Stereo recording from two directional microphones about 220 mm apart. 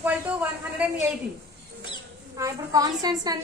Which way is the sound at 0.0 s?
5° right (ahead or behind).